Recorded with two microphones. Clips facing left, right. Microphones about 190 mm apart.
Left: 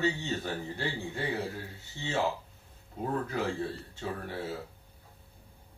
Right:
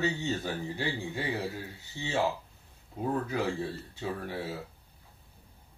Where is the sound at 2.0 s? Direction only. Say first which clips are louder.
Right 1 dB; 15° right (ahead or behind).